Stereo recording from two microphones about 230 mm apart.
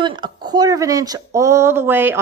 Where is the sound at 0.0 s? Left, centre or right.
Centre.